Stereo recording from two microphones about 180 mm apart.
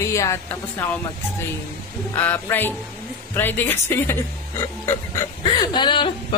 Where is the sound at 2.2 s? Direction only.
10° left (ahead or behind); by 6.3 s 25° left (ahead or behind).